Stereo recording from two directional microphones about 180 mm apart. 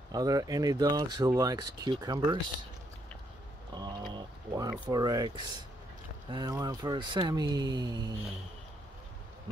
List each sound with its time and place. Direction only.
0.1 s speech: 20° right (ahead or behind)
3.7 s mechanisms: 25° right (ahead or behind)
4.8 s speech: 20° right (ahead or behind)